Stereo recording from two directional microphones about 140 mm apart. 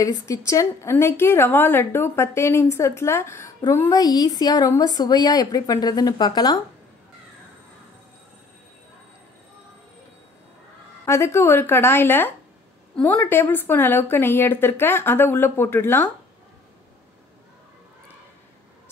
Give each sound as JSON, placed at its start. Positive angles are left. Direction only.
{"t": 0.0, "sound": "a woman's voice", "side_deg": 25}
{"t": 11.1, "sound": "a woman's voice", "side_deg": 20}